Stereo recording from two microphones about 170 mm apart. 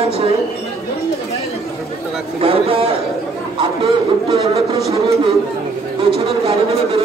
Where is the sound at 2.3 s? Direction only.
35° right (ahead or behind).